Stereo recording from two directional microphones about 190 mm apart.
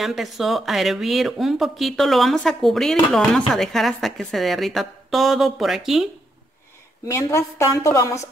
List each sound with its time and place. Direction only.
0.0 s speech: centre (ahead or behind)
7.1 s a woman's voice: 15° left (ahead or behind)